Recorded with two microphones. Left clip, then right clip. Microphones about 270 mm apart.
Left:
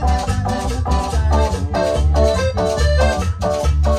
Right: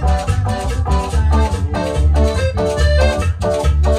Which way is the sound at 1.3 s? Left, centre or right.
Left.